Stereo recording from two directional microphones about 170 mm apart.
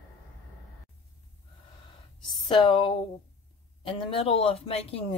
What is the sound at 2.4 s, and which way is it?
A woman's voice, 30° left (ahead or behind).